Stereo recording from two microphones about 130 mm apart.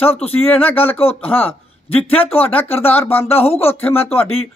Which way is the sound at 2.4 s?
15° left (ahead or behind).